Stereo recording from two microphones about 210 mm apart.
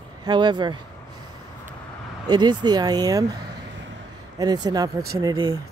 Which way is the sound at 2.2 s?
20° right (ahead or behind).